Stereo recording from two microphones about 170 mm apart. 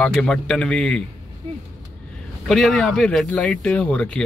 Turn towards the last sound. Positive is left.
turn(degrees=5)  # may be behind; listen again after turning